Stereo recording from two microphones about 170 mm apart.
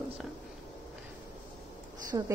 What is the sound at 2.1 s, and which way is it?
Speech, 25° right (ahead or behind).